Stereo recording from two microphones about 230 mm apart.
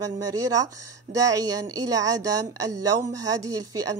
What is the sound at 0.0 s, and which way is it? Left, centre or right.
A woman's voice, centre.